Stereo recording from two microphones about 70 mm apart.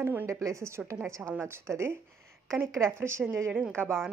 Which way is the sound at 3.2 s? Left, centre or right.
Centre.